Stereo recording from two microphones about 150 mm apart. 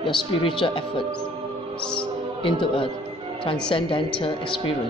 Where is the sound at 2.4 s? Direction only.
35° left (ahead or behind).